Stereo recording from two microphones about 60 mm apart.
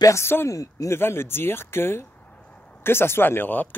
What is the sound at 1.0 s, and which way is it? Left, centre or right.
Speech, left.